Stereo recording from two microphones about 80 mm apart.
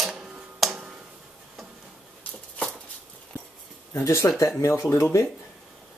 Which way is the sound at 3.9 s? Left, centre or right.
Left.